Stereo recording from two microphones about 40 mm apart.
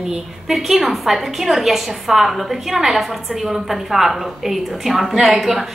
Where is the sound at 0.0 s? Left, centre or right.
Centre.